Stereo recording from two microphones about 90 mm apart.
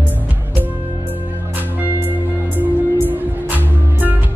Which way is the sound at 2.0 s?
20° right (ahead or behind).